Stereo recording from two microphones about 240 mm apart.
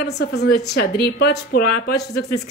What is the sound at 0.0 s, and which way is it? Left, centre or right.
A woman's voice, left.